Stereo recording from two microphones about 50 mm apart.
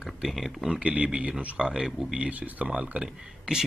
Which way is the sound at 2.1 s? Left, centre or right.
Right.